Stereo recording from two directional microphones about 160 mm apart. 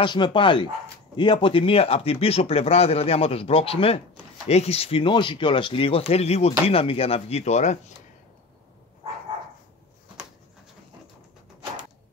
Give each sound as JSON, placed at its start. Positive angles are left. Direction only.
{"t": 0.0, "sound": "speech", "side_deg": 30}